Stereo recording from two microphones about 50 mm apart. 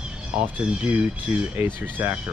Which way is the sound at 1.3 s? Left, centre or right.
Right.